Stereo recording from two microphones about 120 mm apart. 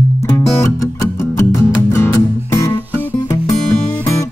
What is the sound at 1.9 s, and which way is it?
Music, 20° left (ahead or behind).